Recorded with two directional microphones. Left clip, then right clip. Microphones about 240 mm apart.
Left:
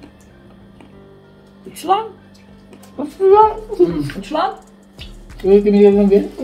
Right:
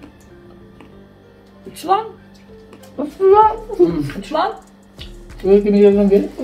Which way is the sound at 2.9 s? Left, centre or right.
Centre.